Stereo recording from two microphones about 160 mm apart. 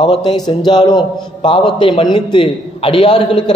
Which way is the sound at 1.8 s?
30° left (ahead or behind).